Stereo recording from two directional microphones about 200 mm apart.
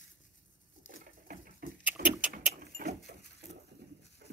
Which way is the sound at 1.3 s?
45° right (ahead or behind).